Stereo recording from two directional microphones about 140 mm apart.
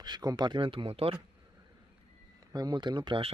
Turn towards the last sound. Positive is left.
turn(degrees=-35)  # may be behind; listen again after turning